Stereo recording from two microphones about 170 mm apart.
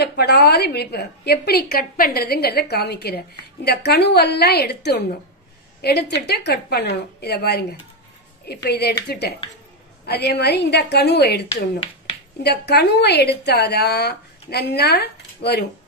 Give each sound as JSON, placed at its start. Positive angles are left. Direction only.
{"t": 0.0, "sound": "a woman's voice", "side_deg": 70}
{"t": 8.6, "sound": "a woman's voice", "side_deg": 70}